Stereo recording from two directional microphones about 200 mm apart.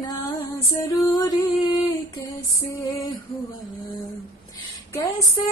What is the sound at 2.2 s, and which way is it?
Female singing, 15° left (ahead or behind).